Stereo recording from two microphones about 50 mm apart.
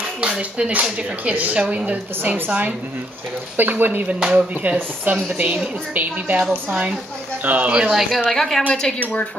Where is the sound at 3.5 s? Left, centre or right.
Right.